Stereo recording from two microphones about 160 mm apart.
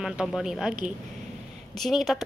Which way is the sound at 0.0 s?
5° right (ahead or behind).